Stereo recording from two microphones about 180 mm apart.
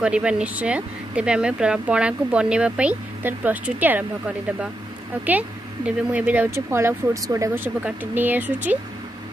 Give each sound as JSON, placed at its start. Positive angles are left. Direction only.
{"t": 0.0, "sound": "speech", "side_deg": -5}
{"t": 5.9, "sound": "speech", "side_deg": -10}